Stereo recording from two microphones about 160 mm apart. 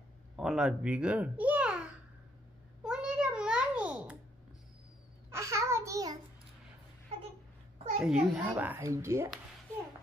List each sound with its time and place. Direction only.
0.4 s a child's voice: 5° right (ahead or behind)
2.8 s babbling: 5° right (ahead or behind)
5.3 s babbling: 20° right (ahead or behind)
8.0 s a child's voice: 5° right (ahead or behind)